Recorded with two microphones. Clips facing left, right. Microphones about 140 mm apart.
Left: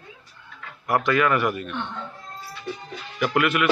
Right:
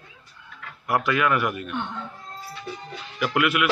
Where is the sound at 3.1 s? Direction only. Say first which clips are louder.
Left 1 dB; 5° right (ahead or behind).